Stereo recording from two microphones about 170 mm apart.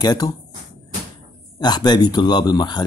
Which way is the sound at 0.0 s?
25° left (ahead or behind).